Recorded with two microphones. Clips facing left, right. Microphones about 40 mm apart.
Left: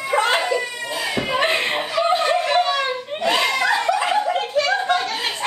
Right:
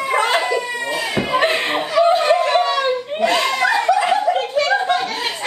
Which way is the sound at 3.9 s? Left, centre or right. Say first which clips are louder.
Right 3 dB; centre.